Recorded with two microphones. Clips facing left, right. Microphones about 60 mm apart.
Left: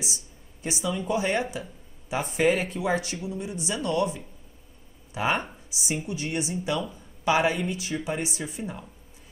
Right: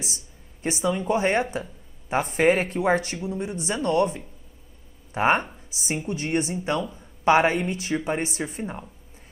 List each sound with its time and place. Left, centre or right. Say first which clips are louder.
0.0 s speech: even; right